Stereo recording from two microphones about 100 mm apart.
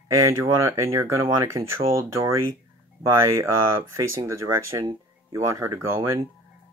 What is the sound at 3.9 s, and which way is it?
Speech, 30° right (ahead or behind).